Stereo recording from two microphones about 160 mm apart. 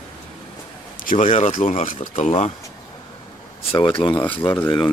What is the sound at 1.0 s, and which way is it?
Speech, 55° left (ahead or behind).